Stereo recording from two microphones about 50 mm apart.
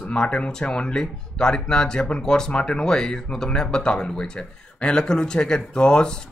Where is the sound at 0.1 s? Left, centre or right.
Centre.